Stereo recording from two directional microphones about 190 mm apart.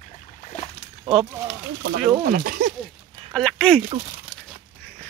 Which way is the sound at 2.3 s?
50° right (ahead or behind).